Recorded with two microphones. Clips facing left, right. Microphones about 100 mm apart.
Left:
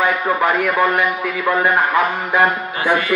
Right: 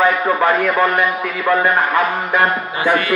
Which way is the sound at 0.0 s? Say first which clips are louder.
Right 2 dB; 15° left (ahead or behind).